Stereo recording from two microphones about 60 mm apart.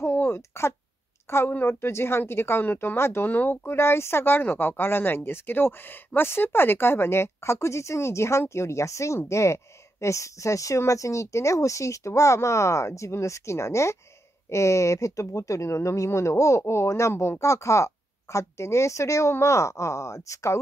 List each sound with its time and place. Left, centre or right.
0.0 s a sound: left
1.3 s a woman's voice: left
17.4 s speech: left